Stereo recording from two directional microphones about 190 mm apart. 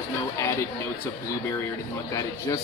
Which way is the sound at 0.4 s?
15° left (ahead or behind).